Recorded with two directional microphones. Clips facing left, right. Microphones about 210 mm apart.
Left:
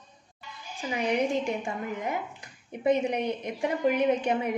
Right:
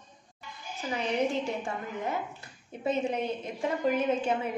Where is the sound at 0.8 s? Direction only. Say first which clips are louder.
Left 2 dB; 15° left (ahead or behind).